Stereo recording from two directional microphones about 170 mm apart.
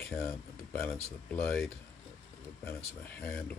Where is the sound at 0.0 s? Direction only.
10° left (ahead or behind).